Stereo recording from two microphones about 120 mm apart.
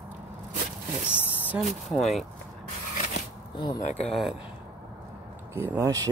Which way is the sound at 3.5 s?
35° left (ahead or behind).